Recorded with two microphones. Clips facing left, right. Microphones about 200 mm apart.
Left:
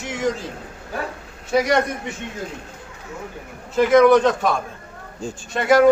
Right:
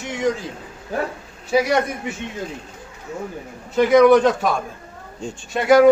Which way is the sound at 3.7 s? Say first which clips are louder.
Right 1 dB; centre (ahead or behind).